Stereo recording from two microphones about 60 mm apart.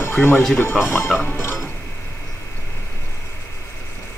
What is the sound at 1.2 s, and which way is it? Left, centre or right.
Music, left.